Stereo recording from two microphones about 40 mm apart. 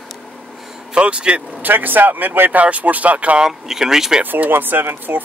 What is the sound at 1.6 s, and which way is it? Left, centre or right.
Speech, right.